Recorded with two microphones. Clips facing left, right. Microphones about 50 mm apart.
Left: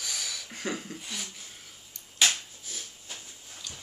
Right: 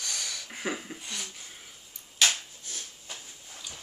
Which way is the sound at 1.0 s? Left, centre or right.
Centre.